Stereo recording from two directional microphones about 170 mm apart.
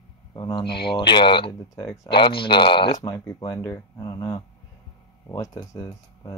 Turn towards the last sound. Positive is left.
turn(degrees=20)  # may be behind; listen again after turning